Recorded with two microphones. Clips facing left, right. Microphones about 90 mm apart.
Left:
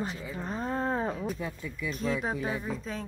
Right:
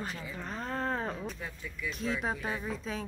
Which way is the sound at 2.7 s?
Centre (ahead or behind).